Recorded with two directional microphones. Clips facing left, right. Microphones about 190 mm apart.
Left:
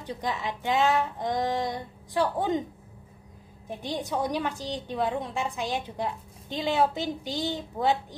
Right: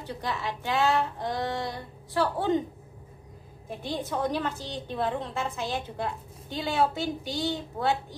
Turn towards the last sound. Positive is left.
turn(degrees=20)  # may be behind; listen again after turning